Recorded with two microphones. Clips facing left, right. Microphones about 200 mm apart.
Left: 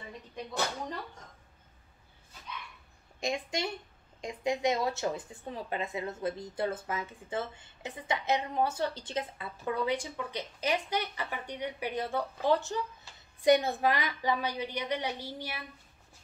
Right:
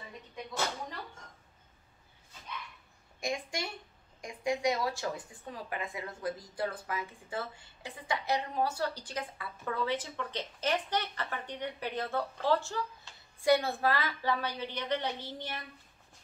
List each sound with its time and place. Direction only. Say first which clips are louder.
3.2 s a woman's voice: left 3 dB; 25° left (ahead or behind)